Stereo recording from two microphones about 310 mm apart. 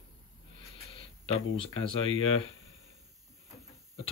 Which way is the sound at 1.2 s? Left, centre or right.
Centre.